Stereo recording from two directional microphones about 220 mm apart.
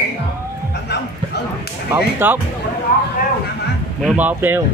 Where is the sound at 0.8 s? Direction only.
50° left (ahead or behind).